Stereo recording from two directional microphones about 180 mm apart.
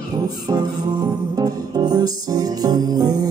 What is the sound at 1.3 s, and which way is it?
Music, 20° right (ahead or behind).